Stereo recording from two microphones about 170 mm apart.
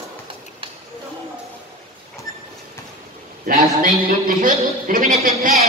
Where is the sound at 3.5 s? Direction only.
55° right (ahead or behind).